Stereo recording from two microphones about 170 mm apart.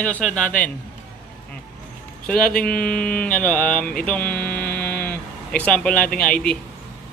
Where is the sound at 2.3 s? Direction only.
55° left (ahead or behind).